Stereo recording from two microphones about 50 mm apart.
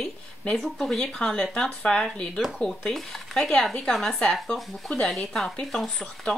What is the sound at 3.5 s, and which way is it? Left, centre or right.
Speech, centre.